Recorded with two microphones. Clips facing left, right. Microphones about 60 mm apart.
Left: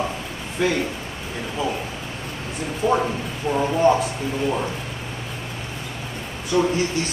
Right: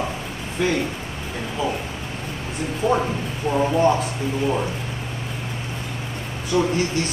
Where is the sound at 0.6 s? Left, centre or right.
Centre.